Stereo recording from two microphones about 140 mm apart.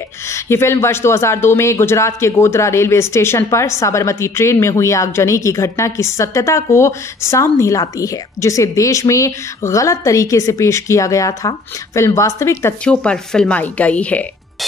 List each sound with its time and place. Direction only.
0.3 s speech: 20° left (ahead or behind)
12.8 s speech: 5° left (ahead or behind)